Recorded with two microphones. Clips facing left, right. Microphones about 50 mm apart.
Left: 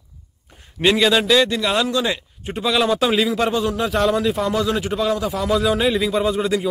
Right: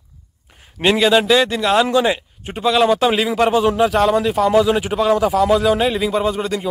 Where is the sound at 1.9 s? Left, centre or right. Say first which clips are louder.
Right 5 dB; right.